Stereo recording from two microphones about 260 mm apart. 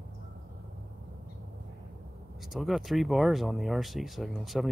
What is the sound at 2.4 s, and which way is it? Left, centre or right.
Speech, centre.